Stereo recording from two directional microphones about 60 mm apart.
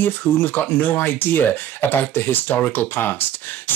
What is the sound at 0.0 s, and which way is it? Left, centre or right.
Speech, left.